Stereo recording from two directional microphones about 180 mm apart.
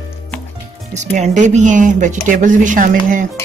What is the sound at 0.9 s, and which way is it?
Speech, 40° right (ahead or behind).